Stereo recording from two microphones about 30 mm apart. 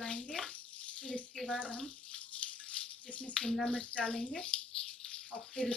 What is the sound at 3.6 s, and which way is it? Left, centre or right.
Speech, left.